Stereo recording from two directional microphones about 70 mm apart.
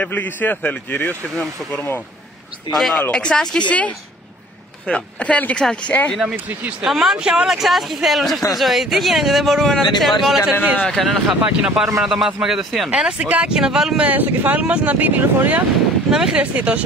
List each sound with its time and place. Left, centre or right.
0.0 s a man's voice: left
1.3 s speech: centre
6.2 s speech: right
6.8 s speech: centre
11.4 s speech: centre
13.2 s speech: right
13.5 s speech: centre
14.0 s speech: right
16.1 s speech: centre
16.3 s speech: centre